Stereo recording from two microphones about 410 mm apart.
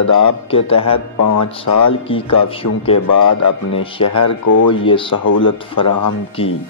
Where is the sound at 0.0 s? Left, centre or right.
Left.